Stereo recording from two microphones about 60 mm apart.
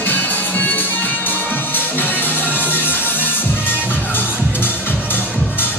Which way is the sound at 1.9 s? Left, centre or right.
Left.